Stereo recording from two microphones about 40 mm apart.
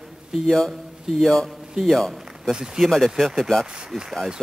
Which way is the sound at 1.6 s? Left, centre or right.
Centre.